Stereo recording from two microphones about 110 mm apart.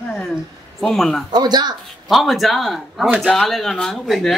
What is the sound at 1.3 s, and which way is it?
Speech, 40° right (ahead or behind).